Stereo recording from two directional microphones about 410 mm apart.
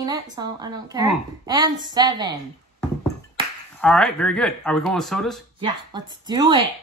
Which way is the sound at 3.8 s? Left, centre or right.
Centre.